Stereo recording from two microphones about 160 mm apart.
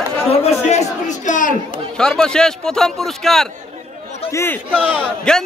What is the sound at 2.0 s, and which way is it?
A man's voice, 5° left (ahead or behind).